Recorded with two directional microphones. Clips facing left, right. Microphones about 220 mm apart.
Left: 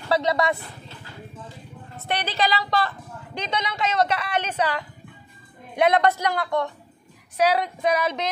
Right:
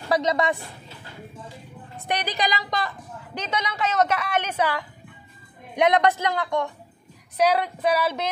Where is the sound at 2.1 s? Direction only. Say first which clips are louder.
Left 1 dB; 15° right (ahead or behind).